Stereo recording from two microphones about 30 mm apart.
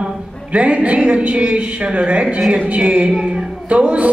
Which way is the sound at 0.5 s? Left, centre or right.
Right.